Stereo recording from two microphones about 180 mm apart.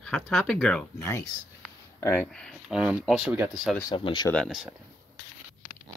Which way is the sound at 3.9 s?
25° left (ahead or behind).